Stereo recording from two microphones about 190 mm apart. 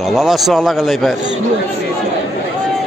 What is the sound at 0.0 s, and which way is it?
A man's voice, centre (ahead or behind).